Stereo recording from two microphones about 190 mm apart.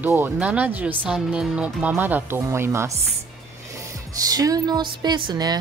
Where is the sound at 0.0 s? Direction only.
10° right (ahead or behind).